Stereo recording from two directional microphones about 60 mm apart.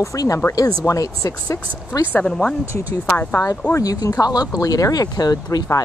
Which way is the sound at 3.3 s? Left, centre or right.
Left.